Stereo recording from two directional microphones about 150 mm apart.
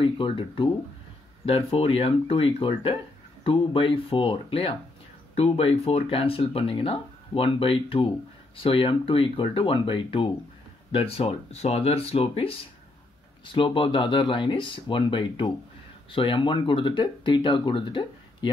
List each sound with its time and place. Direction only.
0.0 s speech: 35° left (ahead or behind)
1.7 s speech: 40° left (ahead or behind)